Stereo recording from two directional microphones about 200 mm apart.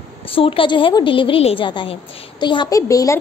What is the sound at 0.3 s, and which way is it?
A woman's voice, 25° left (ahead or behind).